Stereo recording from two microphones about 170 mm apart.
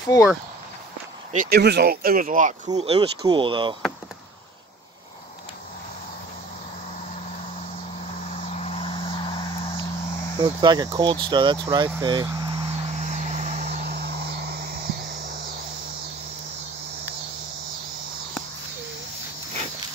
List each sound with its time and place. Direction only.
0.0 s speech: 20° left (ahead or behind)
1.3 s speech: 50° right (ahead or behind)
1.6 s speech: 75° right (ahead or behind); by 2.8 s 50° right (ahead or behind)
2.8 s speech: 35° right (ahead or behind)
8.5 s vehicle: 35° left (ahead or behind)
10.6 s speech: 25° right (ahead or behind)
11.6 s cricket: 25° right (ahead or behind); by 14.6 s 80° right